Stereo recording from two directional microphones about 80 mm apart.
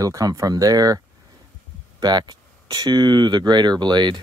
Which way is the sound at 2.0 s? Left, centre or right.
Right.